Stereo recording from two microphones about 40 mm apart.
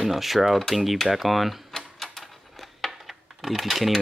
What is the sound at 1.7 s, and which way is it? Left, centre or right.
Typewriter, centre.